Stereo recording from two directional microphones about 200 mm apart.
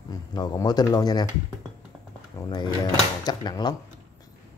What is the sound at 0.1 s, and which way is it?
Speech, 20° left (ahead or behind).